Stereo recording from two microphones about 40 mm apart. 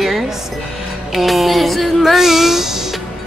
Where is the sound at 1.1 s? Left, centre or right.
Centre.